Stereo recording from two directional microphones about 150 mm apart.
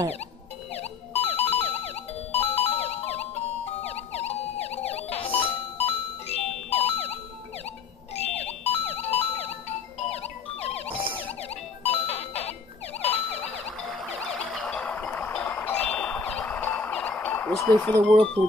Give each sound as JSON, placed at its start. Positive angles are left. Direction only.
{"t": 0.7, "sound": "a sound", "side_deg": 45}
{"t": 2.3, "sound": "music", "side_deg": 45}
{"t": 3.8, "sound": "emergency vehicle", "side_deg": 45}
{"t": 8.2, "sound": "music", "side_deg": 45}
{"t": 11.8, "sound": "music", "side_deg": 40}
{"t": 13.0, "sound": "emergency vehicle", "side_deg": 45}
{"t": 13.8, "sound": "a sound", "side_deg": 5}
{"t": 17.6, "sound": "speech", "side_deg": 10}